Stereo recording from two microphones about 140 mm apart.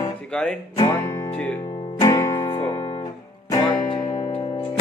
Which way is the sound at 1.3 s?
10° left (ahead or behind).